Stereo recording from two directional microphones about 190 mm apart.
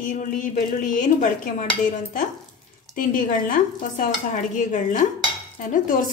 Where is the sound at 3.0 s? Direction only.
45° left (ahead or behind).